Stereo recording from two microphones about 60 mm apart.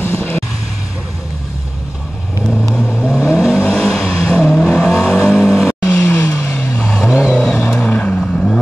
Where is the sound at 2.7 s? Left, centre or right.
Centre.